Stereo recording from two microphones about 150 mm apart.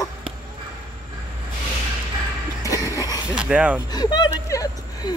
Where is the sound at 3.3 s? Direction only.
10° right (ahead or behind).